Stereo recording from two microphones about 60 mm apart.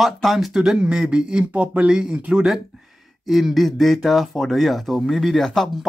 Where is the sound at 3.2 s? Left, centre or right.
Centre.